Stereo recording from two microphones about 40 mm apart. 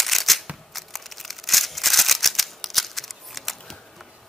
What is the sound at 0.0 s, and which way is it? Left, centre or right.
Scissors, centre.